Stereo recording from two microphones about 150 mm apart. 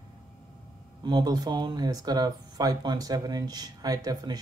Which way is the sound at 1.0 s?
25° right (ahead or behind).